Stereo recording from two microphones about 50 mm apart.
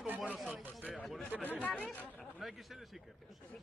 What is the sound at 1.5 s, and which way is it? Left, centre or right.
Speech, left.